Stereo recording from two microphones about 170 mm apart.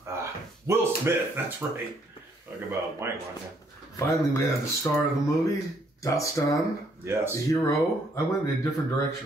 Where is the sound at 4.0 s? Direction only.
20° left (ahead or behind).